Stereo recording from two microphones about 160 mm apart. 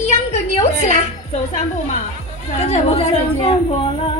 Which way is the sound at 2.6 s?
40° left (ahead or behind).